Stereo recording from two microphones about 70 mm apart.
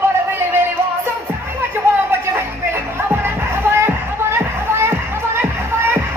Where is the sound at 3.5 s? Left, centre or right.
Right.